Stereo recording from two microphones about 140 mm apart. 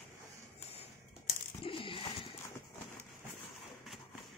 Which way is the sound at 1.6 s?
40° left (ahead or behind).